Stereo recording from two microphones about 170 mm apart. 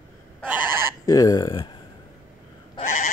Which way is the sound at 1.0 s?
20° left (ahead or behind).